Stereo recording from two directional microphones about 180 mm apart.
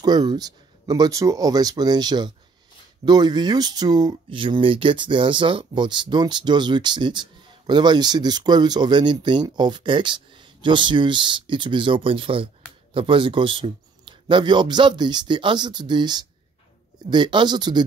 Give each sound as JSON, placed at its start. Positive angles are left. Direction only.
{"t": 0.0, "sound": "speech", "side_deg": -20}